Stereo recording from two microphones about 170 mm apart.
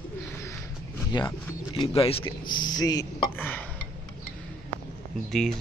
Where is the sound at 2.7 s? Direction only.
20° left (ahead or behind).